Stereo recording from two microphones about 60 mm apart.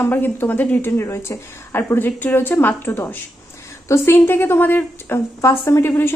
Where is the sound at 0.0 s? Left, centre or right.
Left.